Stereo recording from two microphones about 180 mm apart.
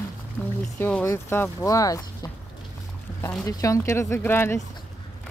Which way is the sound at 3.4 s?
20° left (ahead or behind).